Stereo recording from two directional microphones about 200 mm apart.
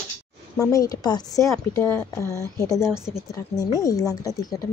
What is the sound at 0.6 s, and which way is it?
Speech, 15° left (ahead or behind).